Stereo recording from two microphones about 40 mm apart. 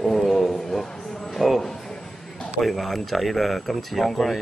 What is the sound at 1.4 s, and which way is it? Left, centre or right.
Speech, centre.